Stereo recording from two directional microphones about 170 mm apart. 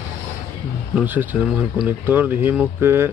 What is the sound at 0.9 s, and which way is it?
Speech, 10° right (ahead or behind).